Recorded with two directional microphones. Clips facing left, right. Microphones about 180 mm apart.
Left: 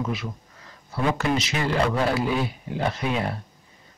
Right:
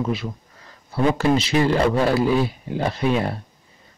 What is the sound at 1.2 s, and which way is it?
Speech, 30° right (ahead or behind).